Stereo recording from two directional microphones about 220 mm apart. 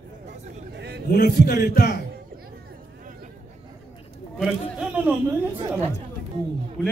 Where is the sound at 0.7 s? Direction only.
50° right (ahead or behind).